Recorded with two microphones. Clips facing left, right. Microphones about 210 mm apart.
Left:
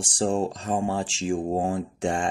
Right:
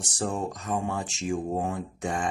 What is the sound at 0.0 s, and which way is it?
Speech, 30° left (ahead or behind).